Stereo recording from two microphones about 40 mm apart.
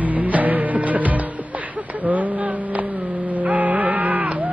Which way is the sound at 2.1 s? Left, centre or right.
Right.